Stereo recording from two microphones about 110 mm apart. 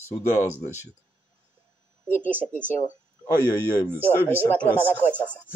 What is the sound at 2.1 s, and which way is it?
Speech, 15° left (ahead or behind).